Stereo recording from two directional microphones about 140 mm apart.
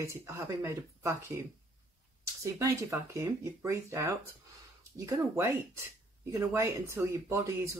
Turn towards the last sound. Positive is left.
turn(degrees=-20)  # may be behind; listen again after turning